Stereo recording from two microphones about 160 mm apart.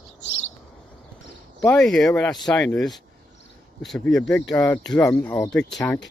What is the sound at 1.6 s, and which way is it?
Speech, 5° left (ahead or behind).